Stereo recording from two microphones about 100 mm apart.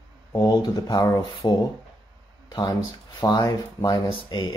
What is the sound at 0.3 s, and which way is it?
Speech, 35° left (ahead or behind).